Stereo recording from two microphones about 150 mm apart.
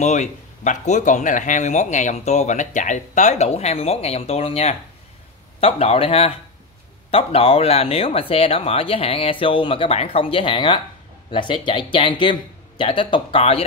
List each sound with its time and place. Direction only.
0.0 s speech: 55° left (ahead or behind)